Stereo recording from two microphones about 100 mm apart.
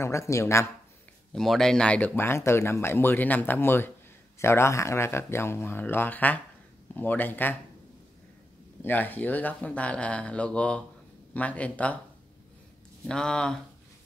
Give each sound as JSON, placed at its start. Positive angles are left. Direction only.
{"t": 0.0, "sound": "speech", "side_deg": 30}
{"t": 1.3, "sound": "speech", "side_deg": 5}
{"t": 8.8, "sound": "speech", "side_deg": 15}
{"t": 13.0, "sound": "speech", "side_deg": 10}